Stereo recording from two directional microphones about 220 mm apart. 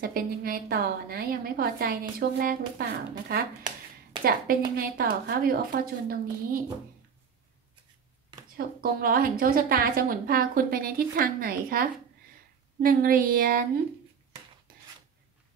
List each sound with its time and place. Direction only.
0.0 s a woman's voice: 40° right (ahead or behind)
8.5 s a woman's voice: 40° right (ahead or behind)